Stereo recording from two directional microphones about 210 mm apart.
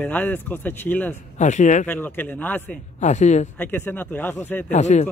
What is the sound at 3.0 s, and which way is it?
Speech, 35° left (ahead or behind).